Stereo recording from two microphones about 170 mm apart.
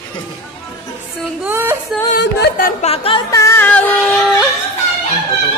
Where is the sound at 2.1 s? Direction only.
80° left.